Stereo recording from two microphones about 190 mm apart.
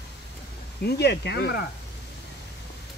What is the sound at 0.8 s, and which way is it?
Speech, 60° left (ahead or behind).